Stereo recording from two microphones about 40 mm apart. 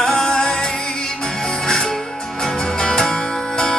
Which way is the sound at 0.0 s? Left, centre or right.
Centre.